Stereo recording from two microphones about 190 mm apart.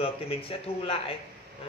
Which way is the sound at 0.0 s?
30° left (ahead or behind).